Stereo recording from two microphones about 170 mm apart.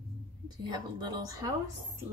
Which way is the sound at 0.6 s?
25° right (ahead or behind).